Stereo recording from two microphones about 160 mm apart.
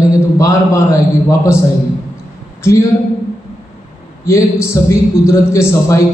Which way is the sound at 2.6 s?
20° left (ahead or behind).